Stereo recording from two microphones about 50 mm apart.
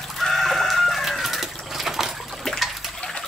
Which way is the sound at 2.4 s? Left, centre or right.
Centre.